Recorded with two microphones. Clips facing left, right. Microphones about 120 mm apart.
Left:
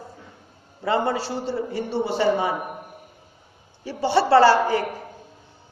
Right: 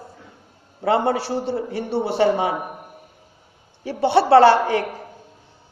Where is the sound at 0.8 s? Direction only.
70° right (ahead or behind).